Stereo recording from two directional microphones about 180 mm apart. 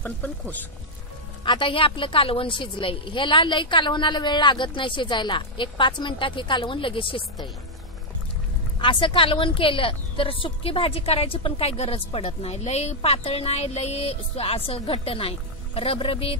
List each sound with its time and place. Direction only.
0.0 s speech: 10° left (ahead or behind)
1.4 s a woman's voice: 25° left (ahead or behind)
8.7 s a woman's voice: 30° left (ahead or behind)